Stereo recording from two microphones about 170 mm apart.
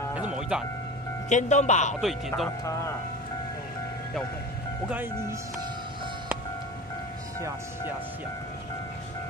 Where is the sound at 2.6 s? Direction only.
20° left (ahead or behind).